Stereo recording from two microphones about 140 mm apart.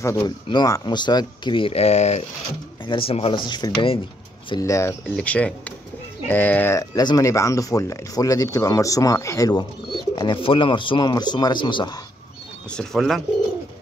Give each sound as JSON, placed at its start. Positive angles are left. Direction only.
{"t": 0.0, "sound": "speech", "side_deg": 20}
{"t": 3.4, "sound": "speech", "side_deg": 30}
{"t": 4.5, "sound": "speech", "side_deg": 25}
{"t": 5.1, "sound": "speech", "side_deg": 10}
{"t": 12.7, "sound": "speech", "side_deg": 0}